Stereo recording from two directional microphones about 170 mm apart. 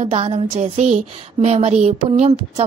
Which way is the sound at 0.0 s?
35° right (ahead or behind).